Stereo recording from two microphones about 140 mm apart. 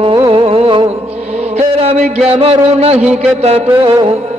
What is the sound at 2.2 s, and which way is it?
A man's voice, 45° right (ahead or behind).